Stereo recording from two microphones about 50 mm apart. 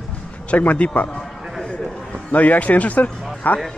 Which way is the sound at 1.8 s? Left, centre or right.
Centre.